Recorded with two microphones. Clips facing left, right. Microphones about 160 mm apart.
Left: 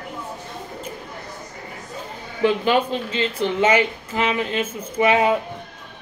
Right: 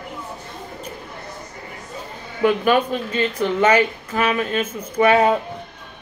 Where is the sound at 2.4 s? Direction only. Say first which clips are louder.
Right 1 dB; 25° left (ahead or behind).